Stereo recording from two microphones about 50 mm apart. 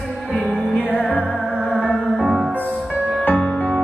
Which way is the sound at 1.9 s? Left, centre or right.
Centre.